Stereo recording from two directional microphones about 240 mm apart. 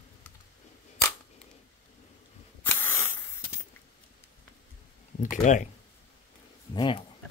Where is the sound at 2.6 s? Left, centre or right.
Centre.